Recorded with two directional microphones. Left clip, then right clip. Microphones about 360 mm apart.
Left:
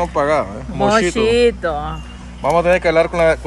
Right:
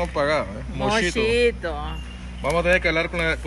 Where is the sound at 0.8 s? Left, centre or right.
Left.